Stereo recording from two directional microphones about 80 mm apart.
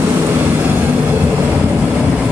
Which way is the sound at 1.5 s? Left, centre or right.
Centre.